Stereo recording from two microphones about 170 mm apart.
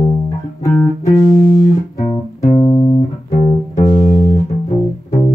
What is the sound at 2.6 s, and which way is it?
Music, 15° left (ahead or behind).